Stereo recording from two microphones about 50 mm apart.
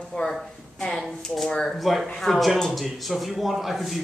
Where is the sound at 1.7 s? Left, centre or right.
Centre.